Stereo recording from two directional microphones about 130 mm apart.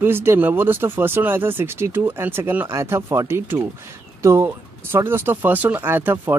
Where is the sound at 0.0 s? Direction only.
15° right (ahead or behind).